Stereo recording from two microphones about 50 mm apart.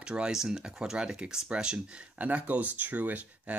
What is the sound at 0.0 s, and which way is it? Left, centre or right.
Speech, centre.